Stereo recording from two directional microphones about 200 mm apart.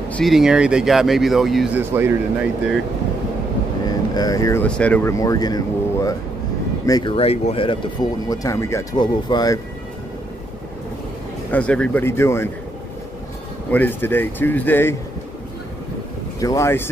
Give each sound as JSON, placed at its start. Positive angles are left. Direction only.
{"t": 0.1, "sound": "speech", "side_deg": 0}
{"t": 3.8, "sound": "vehicle", "side_deg": 20}
{"t": 4.6, "sound": "speech", "side_deg": 5}
{"t": 5.2, "sound": "speech", "side_deg": 20}
{"t": 11.5, "sound": "speech", "side_deg": 5}
{"t": 13.7, "sound": "speech", "side_deg": 10}
{"t": 16.3, "sound": "speech", "side_deg": 15}